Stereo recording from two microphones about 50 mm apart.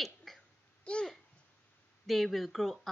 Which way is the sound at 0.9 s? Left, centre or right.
Left.